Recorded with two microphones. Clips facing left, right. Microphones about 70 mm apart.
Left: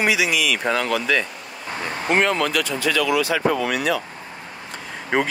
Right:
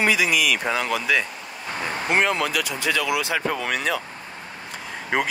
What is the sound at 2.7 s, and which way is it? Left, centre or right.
Speech, right.